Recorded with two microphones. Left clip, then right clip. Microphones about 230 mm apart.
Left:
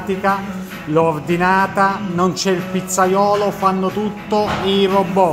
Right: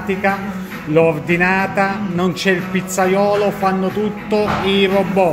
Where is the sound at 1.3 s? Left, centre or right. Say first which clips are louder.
Left 1 dB; centre.